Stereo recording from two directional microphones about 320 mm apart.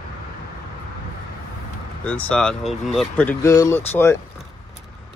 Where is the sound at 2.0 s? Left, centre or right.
Centre.